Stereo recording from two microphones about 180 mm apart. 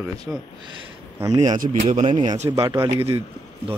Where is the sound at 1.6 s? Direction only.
45° right (ahead or behind).